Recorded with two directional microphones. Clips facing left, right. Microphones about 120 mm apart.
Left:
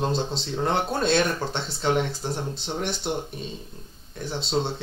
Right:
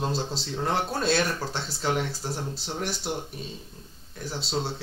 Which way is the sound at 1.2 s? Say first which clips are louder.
Left 3 dB; 20° left (ahead or behind).